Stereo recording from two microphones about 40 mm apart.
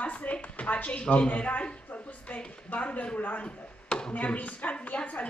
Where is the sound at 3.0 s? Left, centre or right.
Left.